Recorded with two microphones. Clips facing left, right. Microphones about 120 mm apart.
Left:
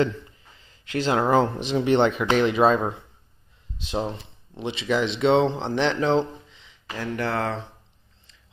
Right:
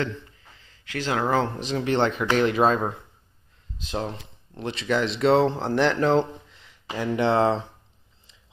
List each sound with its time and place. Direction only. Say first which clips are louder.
0.7 s speech: left 4 dB; 20° left (ahead or behind)
2.3 s speech: left 1 dB; centre (ahead or behind)
4.6 s speech: left 1 dB; centre (ahead or behind)
6.9 s speech: right 5 dB; 20° right (ahead or behind)